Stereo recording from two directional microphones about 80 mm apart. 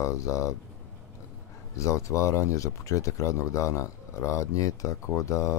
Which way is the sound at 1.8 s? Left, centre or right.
Left.